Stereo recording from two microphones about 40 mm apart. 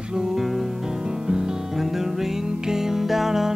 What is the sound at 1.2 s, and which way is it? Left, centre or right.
Music, centre.